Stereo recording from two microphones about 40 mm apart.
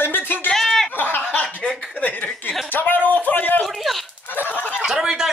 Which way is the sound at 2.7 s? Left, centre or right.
Left.